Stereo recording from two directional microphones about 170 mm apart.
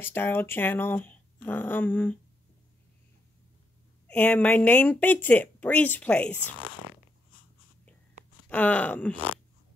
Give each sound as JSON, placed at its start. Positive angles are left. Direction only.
{"t": 0.0, "sound": "speech", "side_deg": 10}
{"t": 4.1, "sound": "speech", "side_deg": 10}
{"t": 8.5, "sound": "speech", "side_deg": 10}